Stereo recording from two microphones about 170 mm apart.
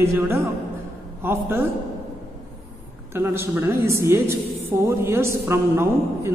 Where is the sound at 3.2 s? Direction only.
15° right (ahead or behind).